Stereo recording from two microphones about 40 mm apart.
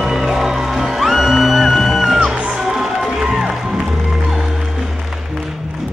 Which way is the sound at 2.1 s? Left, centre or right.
Centre.